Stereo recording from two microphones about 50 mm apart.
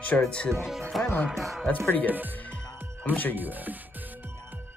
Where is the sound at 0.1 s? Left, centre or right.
Left.